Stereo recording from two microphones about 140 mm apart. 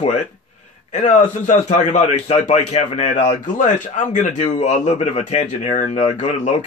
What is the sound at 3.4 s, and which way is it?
A man's voice, 65° left (ahead or behind).